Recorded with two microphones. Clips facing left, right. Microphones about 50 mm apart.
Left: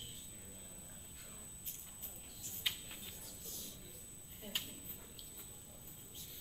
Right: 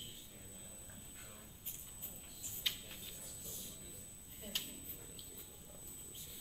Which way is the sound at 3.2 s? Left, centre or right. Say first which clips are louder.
Even; centre.